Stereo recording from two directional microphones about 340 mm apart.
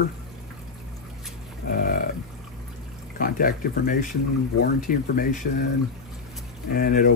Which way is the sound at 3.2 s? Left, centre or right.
Left.